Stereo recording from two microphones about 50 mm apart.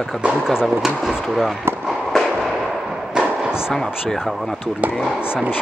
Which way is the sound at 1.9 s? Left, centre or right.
Centre.